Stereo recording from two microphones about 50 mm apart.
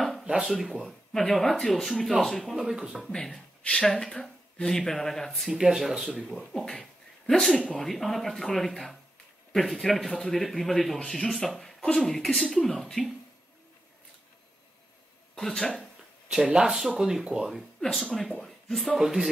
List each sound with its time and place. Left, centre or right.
0.2 s a sound: centre
0.5 s speech: centre
1.1 s speech: centre
2.6 s speech: centre
3.1 s speech: centre
5.8 s speech: centre
6.8 s a sound: centre
7.7 s speech: centre
15.3 s speech: centre
16.3 s speech: centre
17.9 s speech: centre
18.9 s speech: centre